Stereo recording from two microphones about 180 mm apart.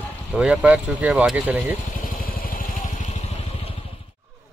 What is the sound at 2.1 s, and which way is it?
Vehicle, 50° left (ahead or behind).